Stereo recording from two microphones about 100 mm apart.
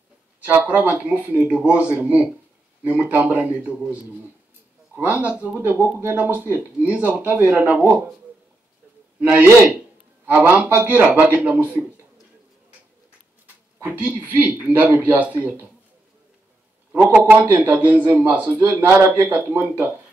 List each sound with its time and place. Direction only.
0.5 s speech: 15° right (ahead or behind)
9.2 s a man's voice: 20° right (ahead or behind)
13.8 s speech: 15° right (ahead or behind)
17.1 s a man's voice: 15° right (ahead or behind)